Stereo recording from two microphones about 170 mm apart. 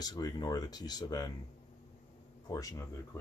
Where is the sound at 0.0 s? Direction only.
25° left (ahead or behind).